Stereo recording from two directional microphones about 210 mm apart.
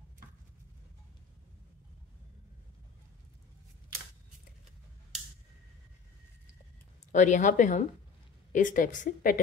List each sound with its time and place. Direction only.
7.1 s a woman's voice: 35° left (ahead or behind)